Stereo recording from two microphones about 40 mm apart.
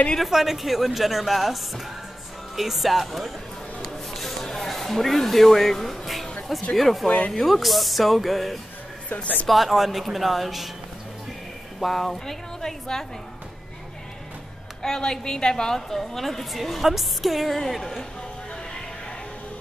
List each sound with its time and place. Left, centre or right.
0.2 s a woman's voice: centre
3.8 s a sound: centre
6.7 s a woman's voice: centre
7.1 s speech: left
7.3 s a woman's voice: centre
11.8 s a woman's voice: centre
14.8 s a woman's voice: centre